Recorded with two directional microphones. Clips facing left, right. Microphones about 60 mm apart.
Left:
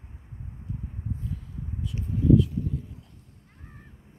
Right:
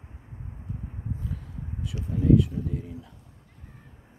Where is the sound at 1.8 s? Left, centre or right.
Right.